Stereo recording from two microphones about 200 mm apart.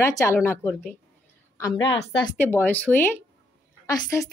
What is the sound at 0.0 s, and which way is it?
Speech, 15° left (ahead or behind).